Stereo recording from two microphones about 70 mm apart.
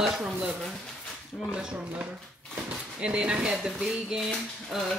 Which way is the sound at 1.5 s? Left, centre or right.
Centre.